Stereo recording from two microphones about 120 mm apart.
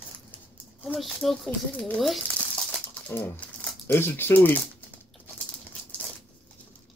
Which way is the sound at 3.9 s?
20° left (ahead or behind).